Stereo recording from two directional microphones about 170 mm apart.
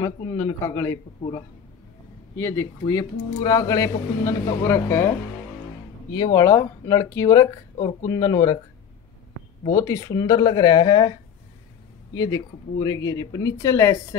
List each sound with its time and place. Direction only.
0.0 s speech: 15° left (ahead or behind)
2.3 s speech: 15° left (ahead or behind)
6.1 s speech: 20° left (ahead or behind)
9.8 s speech: 20° left (ahead or behind)